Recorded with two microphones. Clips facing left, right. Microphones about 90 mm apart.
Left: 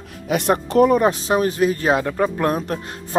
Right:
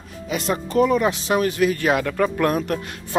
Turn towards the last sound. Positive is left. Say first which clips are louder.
# left 1 dB
turn(degrees=25)  # may be behind; listen again after turning